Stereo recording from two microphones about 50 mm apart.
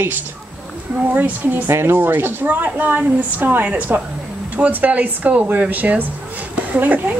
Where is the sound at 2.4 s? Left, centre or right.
Right.